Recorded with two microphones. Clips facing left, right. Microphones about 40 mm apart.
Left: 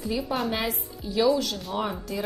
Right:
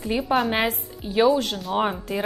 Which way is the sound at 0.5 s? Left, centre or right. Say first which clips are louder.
Right 5 dB; right.